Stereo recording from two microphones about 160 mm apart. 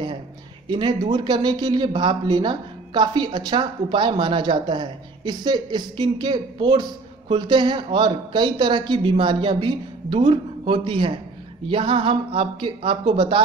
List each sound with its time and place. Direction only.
0.7 s speech: 30° right (ahead or behind)